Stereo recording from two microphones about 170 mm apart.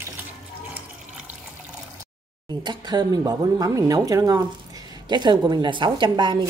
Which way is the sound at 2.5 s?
25° right (ahead or behind).